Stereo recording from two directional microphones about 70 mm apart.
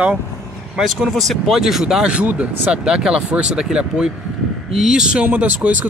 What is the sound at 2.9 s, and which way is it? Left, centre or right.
Speech, centre.